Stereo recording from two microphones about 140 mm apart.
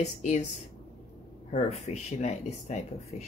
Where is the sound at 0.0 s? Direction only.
55° left (ahead or behind).